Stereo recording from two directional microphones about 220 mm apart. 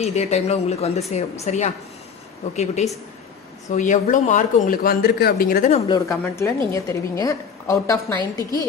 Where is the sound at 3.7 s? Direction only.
35° left (ahead or behind).